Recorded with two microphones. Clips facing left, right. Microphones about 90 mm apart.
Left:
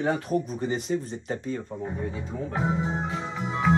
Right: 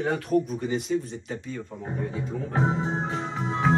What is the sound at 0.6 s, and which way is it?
Speech, 35° left (ahead or behind).